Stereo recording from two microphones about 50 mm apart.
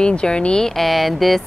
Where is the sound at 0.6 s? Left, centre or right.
Centre.